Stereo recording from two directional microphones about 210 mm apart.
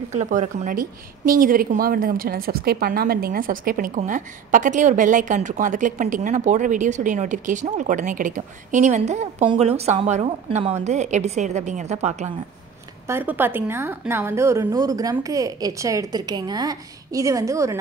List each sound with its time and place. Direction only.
0.1 s a woman's voice: 35° right (ahead or behind)
13.0 s a woman's voice: 10° right (ahead or behind)